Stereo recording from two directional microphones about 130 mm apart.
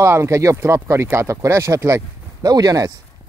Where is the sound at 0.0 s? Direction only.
20° right (ahead or behind).